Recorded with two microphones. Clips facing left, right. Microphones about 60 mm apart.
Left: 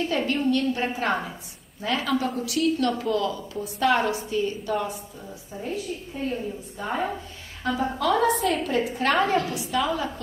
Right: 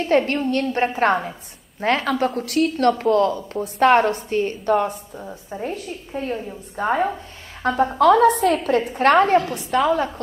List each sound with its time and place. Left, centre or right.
0.3 s a woman's voice: right